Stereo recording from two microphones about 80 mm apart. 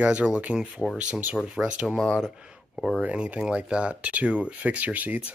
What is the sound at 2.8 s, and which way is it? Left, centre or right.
Speech, centre.